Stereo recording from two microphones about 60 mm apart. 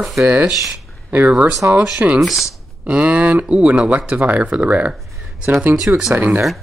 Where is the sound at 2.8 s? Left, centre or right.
Right.